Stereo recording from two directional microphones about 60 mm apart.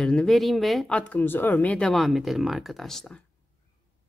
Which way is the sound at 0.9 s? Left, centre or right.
Left.